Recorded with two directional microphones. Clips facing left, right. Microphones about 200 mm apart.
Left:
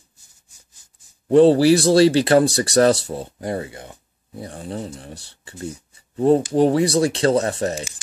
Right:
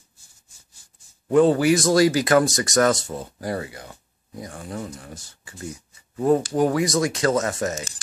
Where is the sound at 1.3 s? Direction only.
30° left (ahead or behind).